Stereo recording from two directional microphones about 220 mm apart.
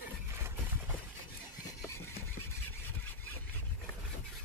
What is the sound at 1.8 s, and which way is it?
Vehicle, 10° left (ahead or behind).